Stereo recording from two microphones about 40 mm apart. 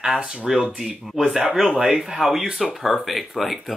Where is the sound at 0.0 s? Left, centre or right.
Centre.